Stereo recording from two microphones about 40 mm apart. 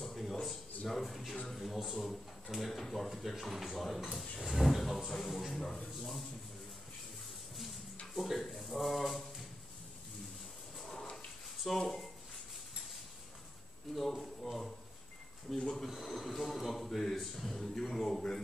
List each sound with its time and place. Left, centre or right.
0.0 s a sound: centre
1.5 s speech: centre
5.6 s speech: centre
8.1 s speech: centre
10.9 s a sound: centre
11.7 s speech: centre
13.9 s speech: centre
15.7 s speech: centre